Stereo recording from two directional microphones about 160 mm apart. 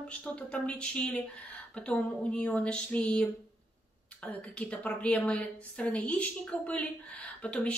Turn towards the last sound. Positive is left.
turn(degrees=5)  # may be behind; listen again after turning